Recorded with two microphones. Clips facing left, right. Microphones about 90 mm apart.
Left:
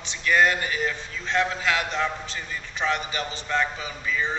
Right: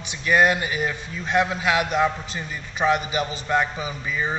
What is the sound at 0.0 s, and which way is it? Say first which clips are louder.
A man's voice: right 2 dB; 15° right (ahead or behind).